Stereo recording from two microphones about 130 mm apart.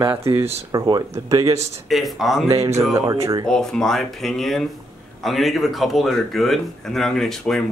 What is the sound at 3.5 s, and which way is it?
Speech, 5° left (ahead or behind).